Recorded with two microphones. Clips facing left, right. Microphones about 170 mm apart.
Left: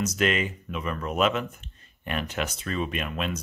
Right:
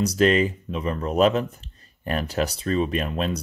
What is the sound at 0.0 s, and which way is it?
Speech, 35° right (ahead or behind).